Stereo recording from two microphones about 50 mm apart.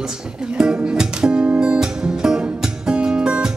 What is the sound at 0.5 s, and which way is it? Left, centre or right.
Music, centre.